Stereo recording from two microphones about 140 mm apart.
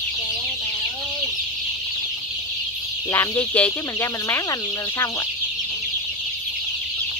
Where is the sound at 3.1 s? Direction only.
20° left (ahead or behind).